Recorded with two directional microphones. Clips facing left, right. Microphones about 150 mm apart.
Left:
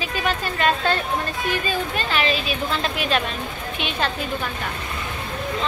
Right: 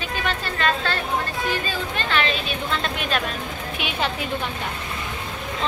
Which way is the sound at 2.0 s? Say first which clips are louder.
Right 2 dB; 5° left (ahead or behind).